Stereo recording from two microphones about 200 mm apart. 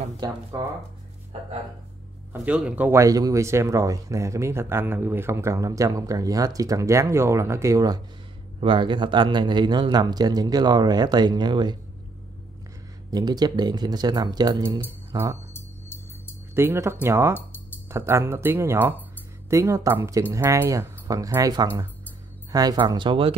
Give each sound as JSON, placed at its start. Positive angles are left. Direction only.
{"t": 0.2, "sound": "speech", "side_deg": -20}
{"t": 1.3, "sound": "speech", "side_deg": -30}
{"t": 2.3, "sound": "speech", "side_deg": -5}
{"t": 13.1, "sound": "speech", "side_deg": -20}
{"t": 15.5, "sound": "music", "side_deg": 10}
{"t": 16.5, "sound": "speech", "side_deg": -10}